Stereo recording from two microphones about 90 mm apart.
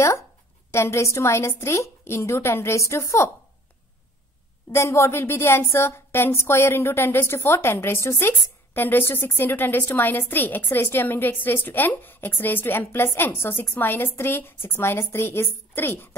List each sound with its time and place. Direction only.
0.7 s a woman's voice: 30° left (ahead or behind)
4.7 s a woman's voice: 35° left (ahead or behind)